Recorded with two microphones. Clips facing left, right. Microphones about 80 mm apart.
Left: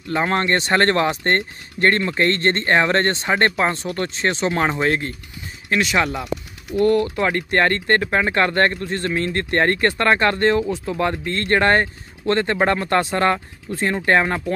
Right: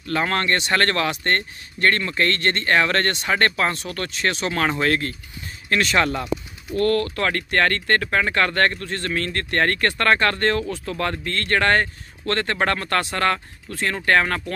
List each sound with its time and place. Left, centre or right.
0.1 s speech: centre